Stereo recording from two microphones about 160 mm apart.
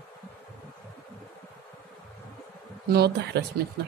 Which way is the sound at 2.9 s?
85° right.